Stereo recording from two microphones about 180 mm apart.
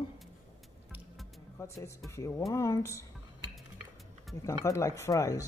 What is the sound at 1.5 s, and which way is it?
Speech, 15° left (ahead or behind).